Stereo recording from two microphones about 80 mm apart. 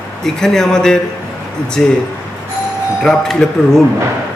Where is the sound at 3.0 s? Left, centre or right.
Centre.